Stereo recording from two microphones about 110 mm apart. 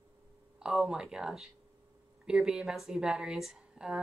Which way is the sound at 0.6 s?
5° right (ahead or behind).